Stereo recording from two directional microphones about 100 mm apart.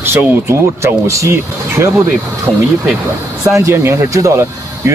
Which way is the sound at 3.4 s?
30° right (ahead or behind).